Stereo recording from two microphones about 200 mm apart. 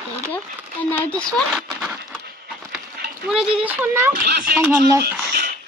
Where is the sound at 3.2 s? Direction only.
5° right (ahead or behind).